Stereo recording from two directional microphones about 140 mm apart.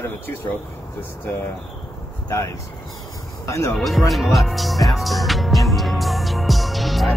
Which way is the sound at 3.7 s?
Centre (ahead or behind).